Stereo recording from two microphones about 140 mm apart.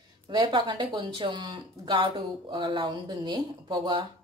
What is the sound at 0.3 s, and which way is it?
Speech, 35° right (ahead or behind).